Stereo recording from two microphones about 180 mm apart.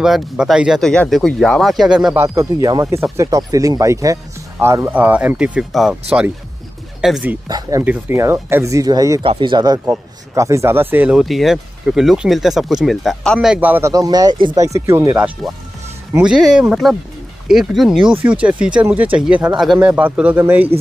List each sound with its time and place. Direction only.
0.0 s speech: centre (ahead or behind)
2.2 s speech: 20° right (ahead or behind); by 5.9 s centre (ahead or behind)
7.0 s speech: 5° right (ahead or behind)
7.4 s speech: 20° right (ahead or behind)